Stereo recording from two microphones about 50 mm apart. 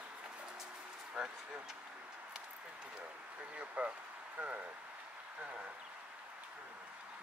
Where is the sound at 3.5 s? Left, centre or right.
Right.